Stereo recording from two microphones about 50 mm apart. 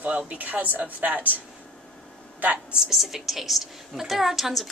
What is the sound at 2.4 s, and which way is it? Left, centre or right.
Speech, right.